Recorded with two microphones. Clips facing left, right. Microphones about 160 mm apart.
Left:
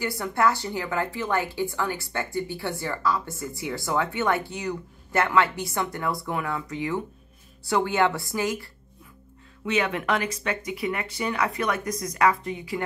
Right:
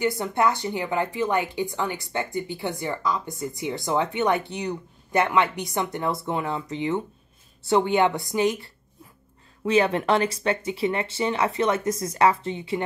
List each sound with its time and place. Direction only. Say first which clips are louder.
0.0 s a woman's voice: right 2 dB; 20° right (ahead or behind)
9.7 s a woman's voice: right 5 dB; 35° right (ahead or behind)